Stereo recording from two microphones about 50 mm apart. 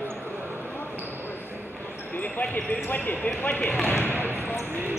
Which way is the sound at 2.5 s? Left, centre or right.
Left.